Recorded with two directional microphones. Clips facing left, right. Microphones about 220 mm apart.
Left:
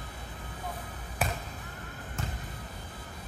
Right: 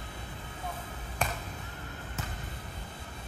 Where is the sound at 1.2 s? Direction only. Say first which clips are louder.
Left 1 dB; 5° left (ahead or behind).